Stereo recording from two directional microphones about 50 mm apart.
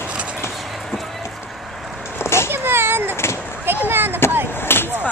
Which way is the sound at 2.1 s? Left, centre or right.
Left.